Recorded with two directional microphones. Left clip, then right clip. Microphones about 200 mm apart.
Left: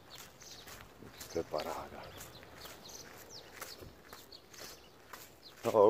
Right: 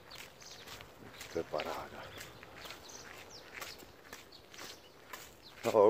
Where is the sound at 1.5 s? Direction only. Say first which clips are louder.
Even; 15° left (ahead or behind).